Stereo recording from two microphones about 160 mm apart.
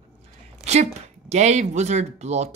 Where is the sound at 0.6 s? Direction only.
45° right (ahead or behind).